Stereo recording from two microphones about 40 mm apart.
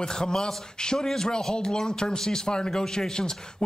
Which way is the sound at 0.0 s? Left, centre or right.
Centre.